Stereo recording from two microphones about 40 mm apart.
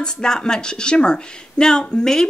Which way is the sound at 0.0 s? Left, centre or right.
Centre.